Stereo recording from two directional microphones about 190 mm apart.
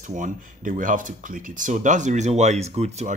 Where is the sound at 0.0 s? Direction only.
40° right (ahead or behind).